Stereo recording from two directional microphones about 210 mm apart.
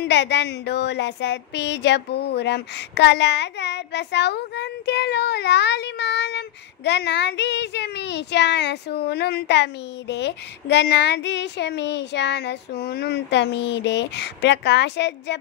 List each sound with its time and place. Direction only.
0.0 s speech: 55° left (ahead or behind)